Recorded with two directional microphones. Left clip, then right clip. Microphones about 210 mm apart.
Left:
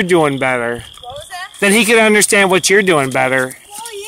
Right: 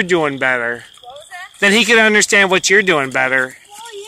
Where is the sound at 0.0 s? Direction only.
5° left (ahead or behind).